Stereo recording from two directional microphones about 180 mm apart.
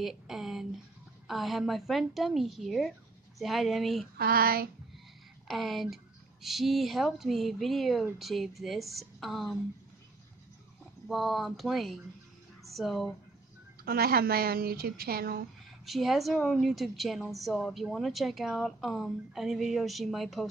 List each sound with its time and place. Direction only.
0.0 s a sound: centre (ahead or behind)
1.2 s a woman's voice: centre (ahead or behind)
4.2 s speech: 55° right (ahead or behind)
5.5 s a woman's voice: centre (ahead or behind)
11.1 s a woman's voice: centre (ahead or behind)
13.8 s speech: 60° right (ahead or behind)
15.8 s a woman's voice: centre (ahead or behind)